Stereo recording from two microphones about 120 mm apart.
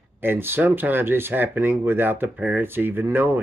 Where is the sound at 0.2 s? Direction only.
15° right (ahead or behind).